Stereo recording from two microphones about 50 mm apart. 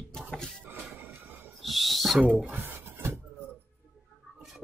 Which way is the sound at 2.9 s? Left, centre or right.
Right.